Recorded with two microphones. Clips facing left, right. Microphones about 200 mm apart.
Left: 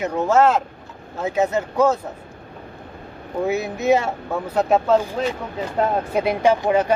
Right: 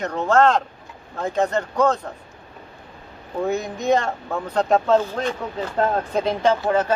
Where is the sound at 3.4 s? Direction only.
5° left (ahead or behind).